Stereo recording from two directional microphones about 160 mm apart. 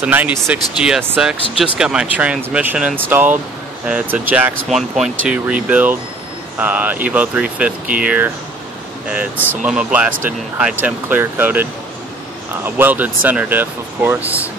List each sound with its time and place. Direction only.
0.0 s speech: 10° right (ahead or behind)
9.6 s speech: 5° right (ahead or behind)